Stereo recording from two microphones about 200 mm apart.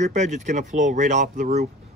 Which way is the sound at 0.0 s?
35° right (ahead or behind).